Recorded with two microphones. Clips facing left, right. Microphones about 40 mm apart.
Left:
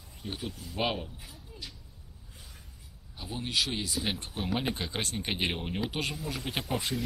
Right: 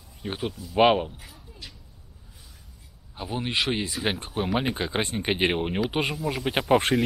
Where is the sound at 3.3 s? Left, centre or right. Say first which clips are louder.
Right 5 dB; right.